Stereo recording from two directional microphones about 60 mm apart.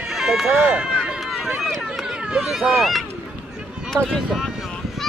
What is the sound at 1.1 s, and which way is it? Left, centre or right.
Run, centre.